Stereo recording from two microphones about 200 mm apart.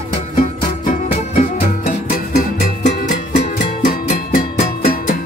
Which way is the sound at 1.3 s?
40° left (ahead or behind).